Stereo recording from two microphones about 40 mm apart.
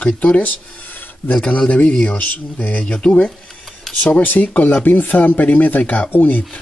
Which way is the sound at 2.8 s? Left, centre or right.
Left.